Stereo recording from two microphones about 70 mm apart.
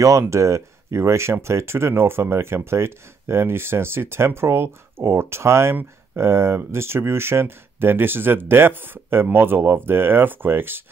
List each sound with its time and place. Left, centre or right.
0.2 s speech: right